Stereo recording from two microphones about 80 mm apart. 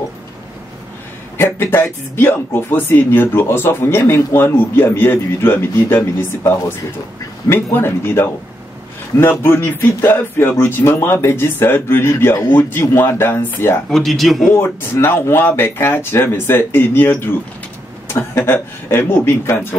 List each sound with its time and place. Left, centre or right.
1.4 s speech: left
13.8 s speech: centre
14.5 s speech: left